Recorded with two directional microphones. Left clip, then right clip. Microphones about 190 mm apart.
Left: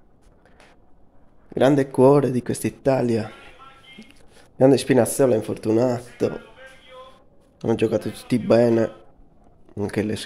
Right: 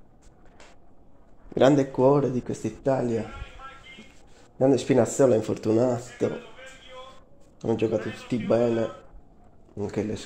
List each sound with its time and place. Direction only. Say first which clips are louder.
1.5 s speech: left 2 dB; 10° left (ahead or behind)
1.9 s speech: left 5 dB; 30° left (ahead or behind)
4.6 s speech: left 5 dB; 20° left (ahead or behind)
7.6 s speech: left 4 dB; 25° left (ahead or behind)